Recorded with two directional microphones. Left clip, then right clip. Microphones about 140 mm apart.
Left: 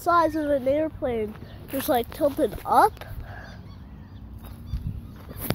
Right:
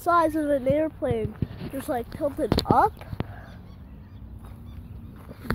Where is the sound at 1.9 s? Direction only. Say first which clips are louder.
Left 5 dB; 40° left (ahead or behind).